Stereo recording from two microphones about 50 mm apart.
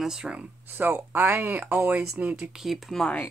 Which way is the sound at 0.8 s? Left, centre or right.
Right.